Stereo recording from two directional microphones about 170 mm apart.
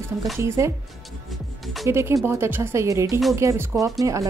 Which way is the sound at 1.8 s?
15° right (ahead or behind).